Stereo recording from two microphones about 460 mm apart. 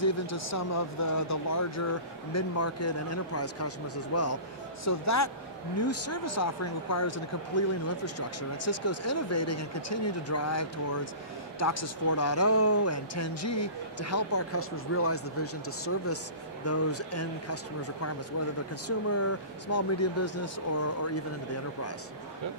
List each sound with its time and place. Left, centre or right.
0.0 s speech: left
18.9 s speech: left